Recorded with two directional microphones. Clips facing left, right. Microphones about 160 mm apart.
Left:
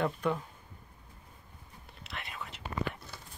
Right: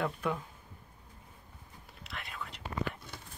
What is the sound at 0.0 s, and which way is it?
Speech, centre (ahead or behind).